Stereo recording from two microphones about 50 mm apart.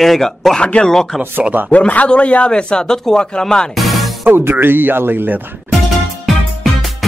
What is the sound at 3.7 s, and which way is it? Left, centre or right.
Music, centre.